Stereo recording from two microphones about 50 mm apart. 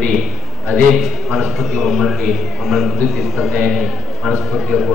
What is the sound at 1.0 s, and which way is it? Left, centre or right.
A man's voice, centre.